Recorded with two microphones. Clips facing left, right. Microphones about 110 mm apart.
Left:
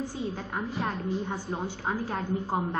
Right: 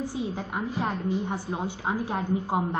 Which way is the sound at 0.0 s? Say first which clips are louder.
Right 2 dB; 15° right (ahead or behind).